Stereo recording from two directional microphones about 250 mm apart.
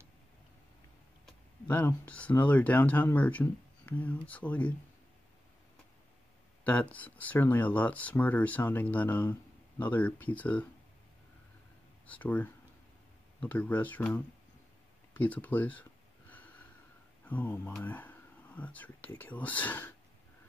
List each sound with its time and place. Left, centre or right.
1.2 s speech: centre
6.6 s speech: centre
12.1 s speech: centre
15.1 s a sound: centre
17.2 s speech: centre